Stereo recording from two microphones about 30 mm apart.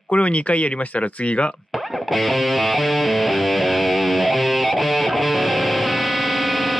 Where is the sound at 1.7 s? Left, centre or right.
Centre.